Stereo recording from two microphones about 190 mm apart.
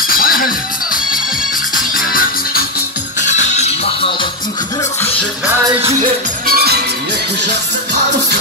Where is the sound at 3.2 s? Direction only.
40° left (ahead or behind).